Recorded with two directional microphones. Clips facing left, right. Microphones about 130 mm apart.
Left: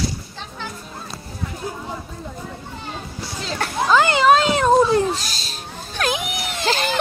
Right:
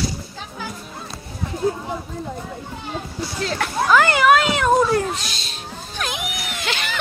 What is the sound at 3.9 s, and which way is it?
Cat, 20° left (ahead or behind).